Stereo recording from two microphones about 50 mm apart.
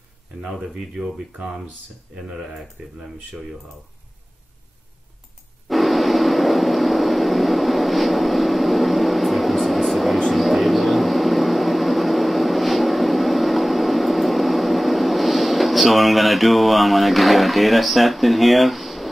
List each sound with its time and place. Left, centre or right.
0.4 s speech: centre
0.9 s speech: centre
2.8 s speech: centre
5.7 s vehicle: centre